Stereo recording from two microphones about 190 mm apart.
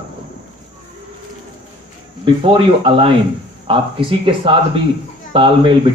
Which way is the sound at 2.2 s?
25° right (ahead or behind).